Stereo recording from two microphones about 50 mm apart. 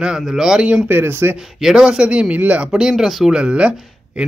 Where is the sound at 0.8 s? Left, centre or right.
Right.